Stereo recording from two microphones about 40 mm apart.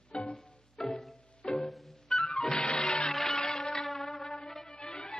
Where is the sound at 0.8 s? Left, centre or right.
Centre.